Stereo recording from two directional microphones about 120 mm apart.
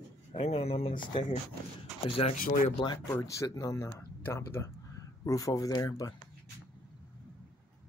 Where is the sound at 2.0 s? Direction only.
60° left (ahead or behind).